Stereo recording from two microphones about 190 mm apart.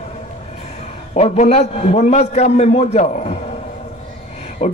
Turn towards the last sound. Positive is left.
turn(degrees=30)  # may be behind; listen again after turning